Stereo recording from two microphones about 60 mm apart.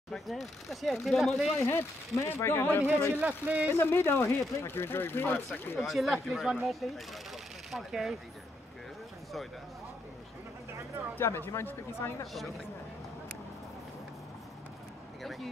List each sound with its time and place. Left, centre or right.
0.1 s speech: centre
1.6 s speech: left
3.2 s a man's voice: right
3.7 s speech: left
5.8 s speech: centre
11.1 s speech: left
15.2 s speech: centre